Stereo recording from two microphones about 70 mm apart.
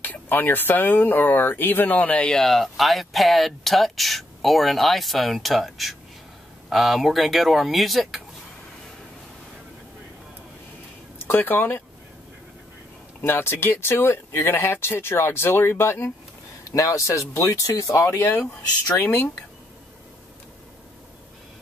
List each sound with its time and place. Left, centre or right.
0.0 s speech: left
2.3 s speech: centre
11.1 s speech: left
13.2 s speech: left
16.6 s speech: left
18.9 s speech: left